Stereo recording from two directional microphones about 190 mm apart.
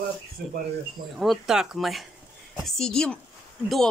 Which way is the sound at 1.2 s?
Centre (ahead or behind).